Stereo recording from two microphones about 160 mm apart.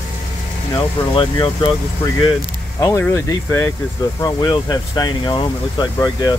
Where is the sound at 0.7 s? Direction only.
30° left (ahead or behind).